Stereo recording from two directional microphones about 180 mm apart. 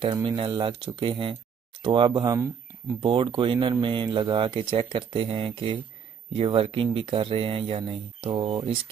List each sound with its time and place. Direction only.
0.0 s speech: 25° right (ahead or behind)
3.0 s speech: 30° right (ahead or behind)